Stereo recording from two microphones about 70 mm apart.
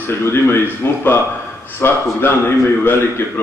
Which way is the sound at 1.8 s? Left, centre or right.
Left.